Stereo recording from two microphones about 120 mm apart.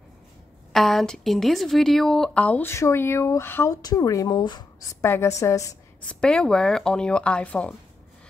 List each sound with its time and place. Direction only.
0.7 s a woman's voice: centre (ahead or behind); by 3.7 s 20° left (ahead or behind)
3.7 s speech: 30° left (ahead or behind)
5.0 s a woman's voice: 25° left (ahead or behind)
6.0 s speech: 5° left (ahead or behind)